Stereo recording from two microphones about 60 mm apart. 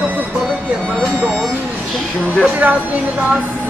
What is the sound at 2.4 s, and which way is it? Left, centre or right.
Speech, right.